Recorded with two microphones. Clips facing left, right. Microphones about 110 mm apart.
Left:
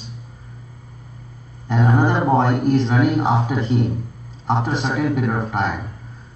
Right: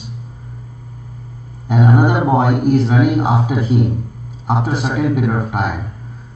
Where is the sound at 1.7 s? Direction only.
10° right (ahead or behind).